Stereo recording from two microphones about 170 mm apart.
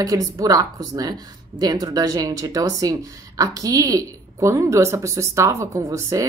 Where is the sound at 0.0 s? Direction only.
20° right (ahead or behind).